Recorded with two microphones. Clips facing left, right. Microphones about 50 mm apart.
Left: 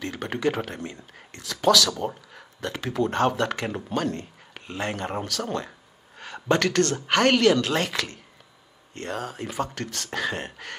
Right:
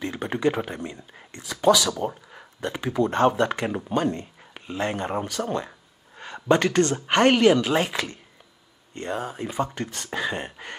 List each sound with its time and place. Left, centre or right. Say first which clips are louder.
0.0 s speech: right 2 dB; centre
4.6 s speech: right 3 dB; centre